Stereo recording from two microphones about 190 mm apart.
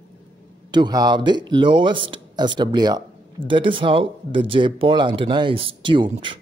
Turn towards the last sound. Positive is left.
turn(degrees=-25)  # may be behind; listen again after turning